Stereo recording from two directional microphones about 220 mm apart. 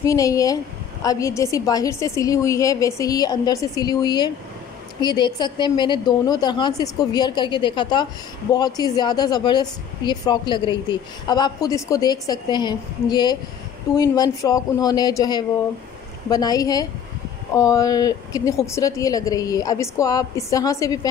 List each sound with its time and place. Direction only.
0.0 s a woman's voice: 15° left (ahead or behind)